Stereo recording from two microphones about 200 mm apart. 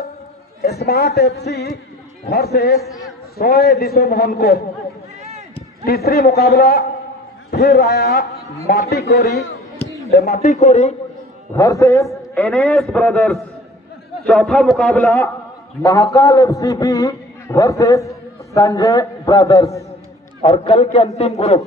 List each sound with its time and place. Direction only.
0.6 s a man's voice: 50° left (ahead or behind)
5.2 s run: 30° right (ahead or behind)
5.9 s a man's voice: 50° left (ahead or behind)
9.8 s a sound: 15° left (ahead or behind)
10.1 s a man's voice: 50° left (ahead or behind)
10.5 s a man's voice: 35° left (ahead or behind)
11.5 s a man's voice: 15° left (ahead or behind)
15.8 s a man's voice: 15° left (ahead or behind)
20.4 s a man's voice: 30° left (ahead or behind)